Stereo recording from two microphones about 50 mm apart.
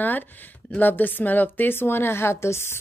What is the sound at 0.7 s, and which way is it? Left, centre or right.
A woman's voice, left.